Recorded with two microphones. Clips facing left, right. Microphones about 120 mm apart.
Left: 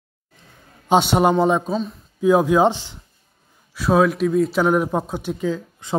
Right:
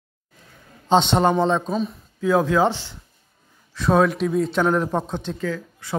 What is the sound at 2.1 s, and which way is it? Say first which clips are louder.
Speech: left 3 dB; 15° left (ahead or behind).